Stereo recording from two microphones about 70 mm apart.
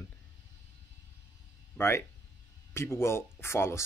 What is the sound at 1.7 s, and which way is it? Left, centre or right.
Speech, left.